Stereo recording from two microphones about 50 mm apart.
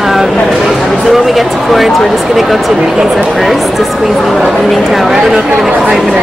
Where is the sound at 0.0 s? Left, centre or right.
Centre.